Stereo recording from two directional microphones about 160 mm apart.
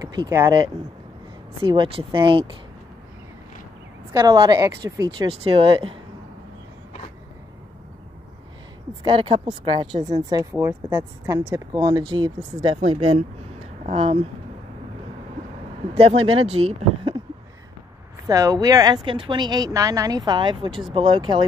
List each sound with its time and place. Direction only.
0.0 s speech: 25° right (ahead or behind)
4.1 s speech: 25° right (ahead or behind)
9.0 s speech: 30° right (ahead or behind)
15.9 s speech: 40° right (ahead or behind)
18.2 s speech: 20° right (ahead or behind)